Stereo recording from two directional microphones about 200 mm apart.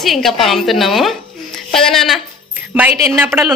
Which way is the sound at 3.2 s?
10° right (ahead or behind).